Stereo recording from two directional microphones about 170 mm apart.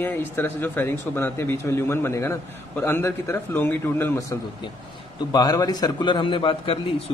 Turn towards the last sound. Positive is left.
turn(degrees=30)  # may be behind; listen again after turning